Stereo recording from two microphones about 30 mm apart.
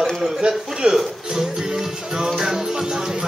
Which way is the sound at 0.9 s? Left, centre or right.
Centre.